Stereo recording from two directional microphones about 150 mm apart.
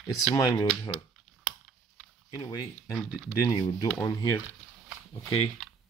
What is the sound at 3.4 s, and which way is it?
Speech, 25° left (ahead or behind).